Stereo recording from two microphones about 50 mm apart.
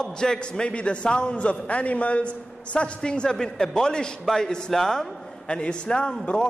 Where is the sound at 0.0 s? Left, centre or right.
Centre.